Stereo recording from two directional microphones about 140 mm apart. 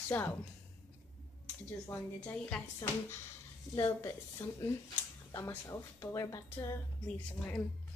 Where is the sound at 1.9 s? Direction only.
10° left (ahead or behind).